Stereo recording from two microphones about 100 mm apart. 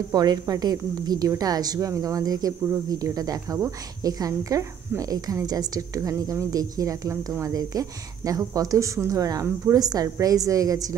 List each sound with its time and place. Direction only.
0.1 s a woman's voice: 40° right (ahead or behind)